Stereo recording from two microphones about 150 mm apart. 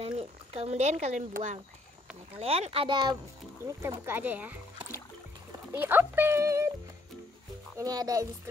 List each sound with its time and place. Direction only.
0.0 s a sound: 40° right (ahead or behind)
1.3 s speech: 55° right (ahead or behind)
2.3 s speech: 40° right (ahead or behind)
3.6 s speech: 20° right (ahead or behind)
5.7 s speech: 15° right (ahead or behind)
7.7 s a child's voice: 25° right (ahead or behind)